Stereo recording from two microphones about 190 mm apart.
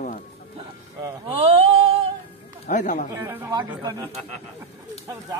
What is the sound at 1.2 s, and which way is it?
Speech, 30° right (ahead or behind).